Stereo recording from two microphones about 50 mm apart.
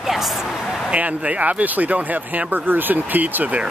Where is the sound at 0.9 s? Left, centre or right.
Right.